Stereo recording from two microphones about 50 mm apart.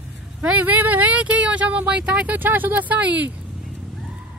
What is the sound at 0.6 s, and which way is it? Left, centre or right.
Speech, right.